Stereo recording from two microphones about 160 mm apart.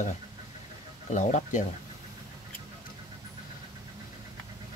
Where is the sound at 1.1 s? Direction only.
50° left (ahead or behind).